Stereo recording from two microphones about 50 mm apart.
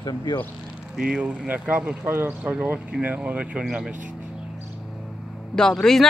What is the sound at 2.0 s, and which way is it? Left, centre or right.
Speech, right.